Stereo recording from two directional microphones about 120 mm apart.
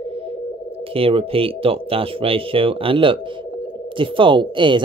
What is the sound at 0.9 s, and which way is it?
Speech, 50° right (ahead or behind).